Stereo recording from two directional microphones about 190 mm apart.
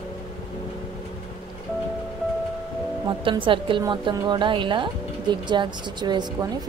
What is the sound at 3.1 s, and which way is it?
Speech, 25° right (ahead or behind).